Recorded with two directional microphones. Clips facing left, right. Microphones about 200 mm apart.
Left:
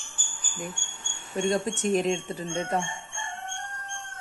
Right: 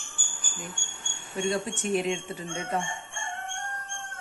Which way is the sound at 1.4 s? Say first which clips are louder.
Left 3 dB; 45° left (ahead or behind).